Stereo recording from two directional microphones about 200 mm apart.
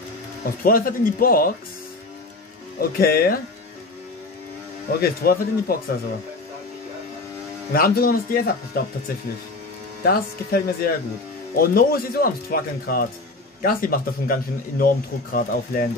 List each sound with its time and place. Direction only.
0.7 s speech: 45° left (ahead or behind)
2.8 s speech: 50° left (ahead or behind)
5.0 s speech: 50° left (ahead or behind)
7.7 s speech: 50° left (ahead or behind)
10.0 s speech: 50° left (ahead or behind)